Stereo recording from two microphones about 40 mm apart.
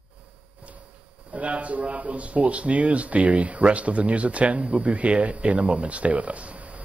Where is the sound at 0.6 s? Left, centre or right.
Right.